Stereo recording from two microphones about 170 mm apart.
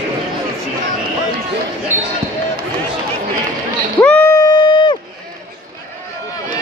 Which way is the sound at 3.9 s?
5° left (ahead or behind).